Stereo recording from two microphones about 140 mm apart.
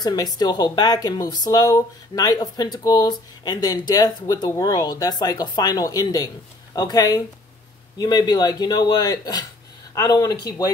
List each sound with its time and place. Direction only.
0.0 s speech: 30° left (ahead or behind)